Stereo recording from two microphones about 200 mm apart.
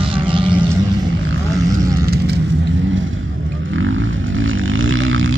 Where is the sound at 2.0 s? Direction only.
50° right (ahead or behind).